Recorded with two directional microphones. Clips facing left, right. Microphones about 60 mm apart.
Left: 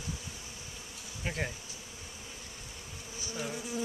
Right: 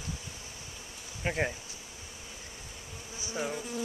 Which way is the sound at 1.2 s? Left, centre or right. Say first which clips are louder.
Right 5 dB; right.